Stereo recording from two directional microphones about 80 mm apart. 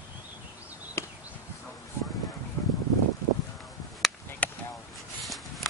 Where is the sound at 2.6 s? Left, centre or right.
Left.